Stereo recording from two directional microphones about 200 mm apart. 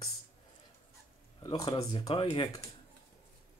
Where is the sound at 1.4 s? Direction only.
20° left (ahead or behind).